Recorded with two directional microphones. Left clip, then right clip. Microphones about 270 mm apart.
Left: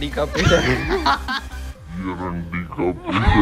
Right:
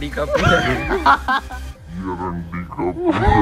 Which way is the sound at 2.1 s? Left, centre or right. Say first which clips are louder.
Right 2 dB; centre.